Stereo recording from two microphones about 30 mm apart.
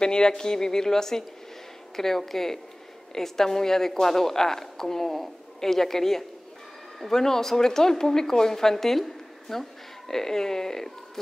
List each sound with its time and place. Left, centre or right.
0.0 s a woman's voice: left